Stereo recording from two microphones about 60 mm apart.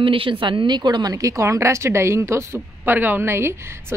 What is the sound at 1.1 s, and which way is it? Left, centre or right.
Speech, right.